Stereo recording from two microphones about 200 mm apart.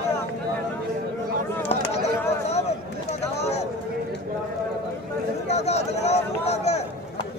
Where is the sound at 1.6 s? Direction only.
30° left (ahead or behind).